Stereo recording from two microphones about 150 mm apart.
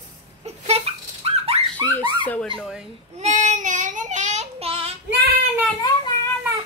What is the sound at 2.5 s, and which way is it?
Speech, centre (ahead or behind).